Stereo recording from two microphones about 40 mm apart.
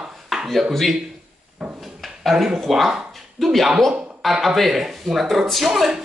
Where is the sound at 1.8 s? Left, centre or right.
Centre.